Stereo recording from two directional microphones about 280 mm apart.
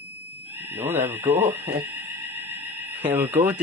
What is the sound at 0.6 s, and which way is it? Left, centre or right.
Speech, centre.